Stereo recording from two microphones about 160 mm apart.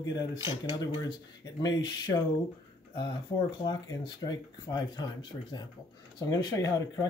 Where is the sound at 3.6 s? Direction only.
30° left (ahead or behind).